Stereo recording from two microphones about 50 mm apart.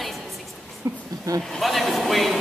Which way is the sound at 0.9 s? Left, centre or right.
Right.